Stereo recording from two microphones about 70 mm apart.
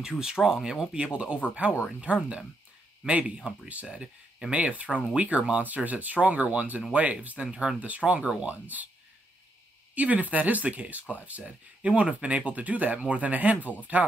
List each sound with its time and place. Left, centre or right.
0.0 s speech: centre
3.8 s speech: centre
9.9 s speech: right